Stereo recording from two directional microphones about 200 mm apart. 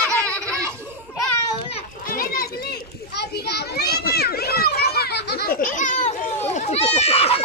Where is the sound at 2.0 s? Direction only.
45° left (ahead or behind).